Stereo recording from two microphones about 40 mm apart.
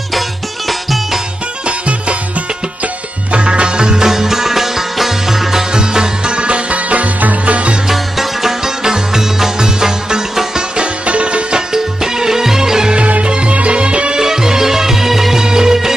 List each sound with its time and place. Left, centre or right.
0.7 s music: centre
1.7 s music: right
7.9 s music: centre
11.1 s music: right
11.7 s music: centre
13.0 s music: right
14.2 s music: centre